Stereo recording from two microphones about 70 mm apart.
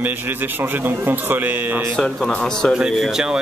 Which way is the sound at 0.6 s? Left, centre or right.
Right.